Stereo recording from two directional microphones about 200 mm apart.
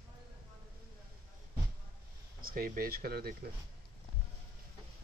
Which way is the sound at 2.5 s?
45° right (ahead or behind).